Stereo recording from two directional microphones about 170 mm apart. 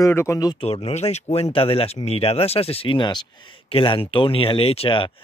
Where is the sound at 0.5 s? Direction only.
35° left (ahead or behind).